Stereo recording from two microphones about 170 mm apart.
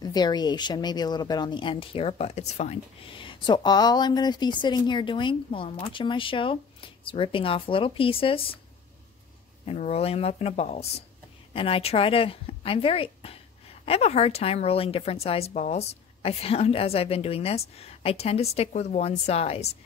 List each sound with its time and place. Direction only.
0.0 s speech: 25° left (ahead or behind)
9.7 s a woman's voice: 40° left (ahead or behind)